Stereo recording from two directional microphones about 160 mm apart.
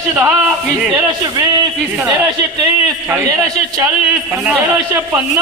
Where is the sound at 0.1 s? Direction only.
15° right (ahead or behind).